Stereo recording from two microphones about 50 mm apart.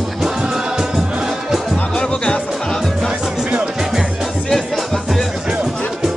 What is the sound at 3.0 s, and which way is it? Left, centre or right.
Music, centre.